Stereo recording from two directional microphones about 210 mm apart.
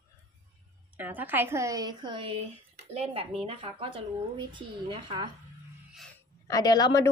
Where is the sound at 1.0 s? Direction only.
10° right (ahead or behind).